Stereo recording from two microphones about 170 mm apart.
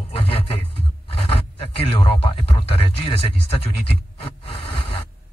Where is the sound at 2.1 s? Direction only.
30° left (ahead or behind).